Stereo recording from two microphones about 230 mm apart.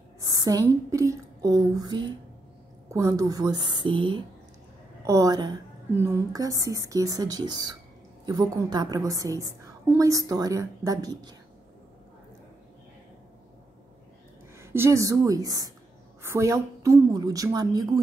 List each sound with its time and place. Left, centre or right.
0.2 s a woman's voice: centre
14.6 s a woman's voice: centre